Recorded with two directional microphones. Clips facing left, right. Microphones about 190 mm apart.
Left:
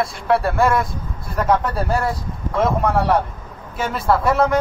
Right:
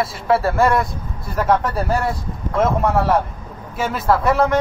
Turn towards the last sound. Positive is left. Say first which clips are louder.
# even
turn(degrees=0)  # may be behind; listen again after turning